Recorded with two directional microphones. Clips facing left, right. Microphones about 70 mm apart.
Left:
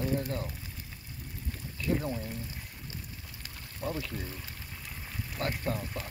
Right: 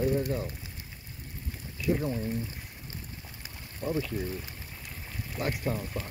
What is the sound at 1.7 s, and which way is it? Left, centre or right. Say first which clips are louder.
Speech: right 3 dB; centre.